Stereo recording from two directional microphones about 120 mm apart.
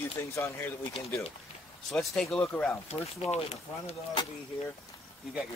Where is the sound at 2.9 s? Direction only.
60° left (ahead or behind).